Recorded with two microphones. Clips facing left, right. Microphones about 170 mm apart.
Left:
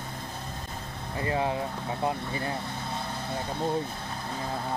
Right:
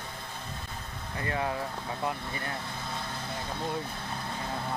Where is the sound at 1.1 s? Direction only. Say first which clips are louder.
Left 4 dB; 25° left (ahead or behind).